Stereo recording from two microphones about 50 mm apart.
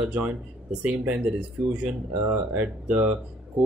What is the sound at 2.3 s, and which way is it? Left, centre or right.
Speech, right.